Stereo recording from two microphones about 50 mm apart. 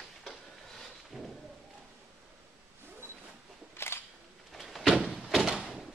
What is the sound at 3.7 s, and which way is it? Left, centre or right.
Camera, left.